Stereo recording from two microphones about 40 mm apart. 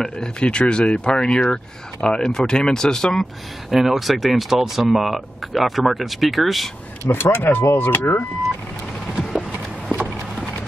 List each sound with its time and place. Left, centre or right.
0.0 s speech: left
3.7 s speech: centre
7.1 s speech: left